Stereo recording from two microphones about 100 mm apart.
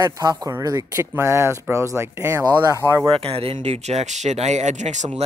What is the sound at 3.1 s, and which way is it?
Speech, 75° right (ahead or behind).